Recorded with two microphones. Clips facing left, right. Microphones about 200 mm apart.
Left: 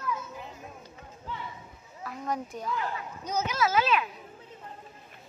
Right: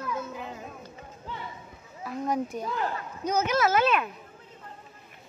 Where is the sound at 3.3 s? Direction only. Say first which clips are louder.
Right 4 dB; 55° right (ahead or behind).